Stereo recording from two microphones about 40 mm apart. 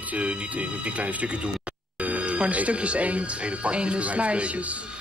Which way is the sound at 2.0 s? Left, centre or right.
Right.